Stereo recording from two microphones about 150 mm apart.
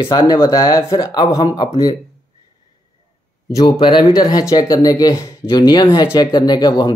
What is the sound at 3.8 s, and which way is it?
A man's voice, 30° left (ahead or behind).